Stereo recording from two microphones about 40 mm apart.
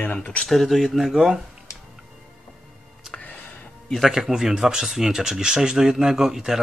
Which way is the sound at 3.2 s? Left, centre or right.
Left.